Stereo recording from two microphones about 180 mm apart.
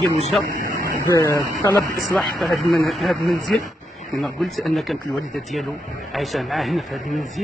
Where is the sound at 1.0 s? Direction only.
15° left (ahead or behind).